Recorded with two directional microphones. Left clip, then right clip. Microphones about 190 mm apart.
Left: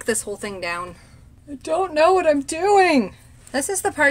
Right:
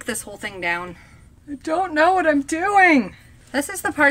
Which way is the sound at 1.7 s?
20° left (ahead or behind).